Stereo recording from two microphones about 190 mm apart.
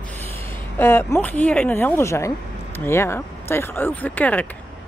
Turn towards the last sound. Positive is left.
turn(degrees=10)  # may be behind; listen again after turning